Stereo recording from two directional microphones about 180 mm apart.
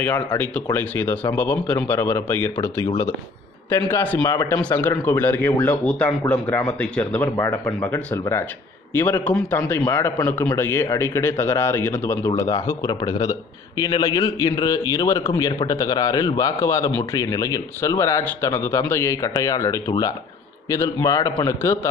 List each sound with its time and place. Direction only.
0.4 s speech: 10° left (ahead or behind)
3.9 s a man's voice: 10° left (ahead or behind)
4.6 s a man's voice: 10° left (ahead or behind)